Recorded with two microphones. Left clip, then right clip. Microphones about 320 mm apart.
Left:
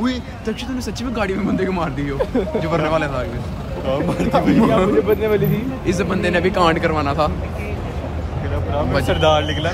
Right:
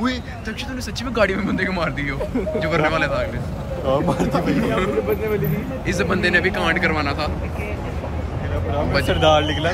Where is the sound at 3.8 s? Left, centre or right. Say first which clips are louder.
Right 1 dB; centre.